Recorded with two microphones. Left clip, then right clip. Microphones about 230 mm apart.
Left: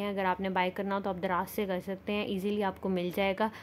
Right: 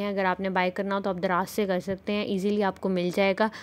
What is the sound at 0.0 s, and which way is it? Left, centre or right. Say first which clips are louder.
A woman's voice: right 4 dB; centre.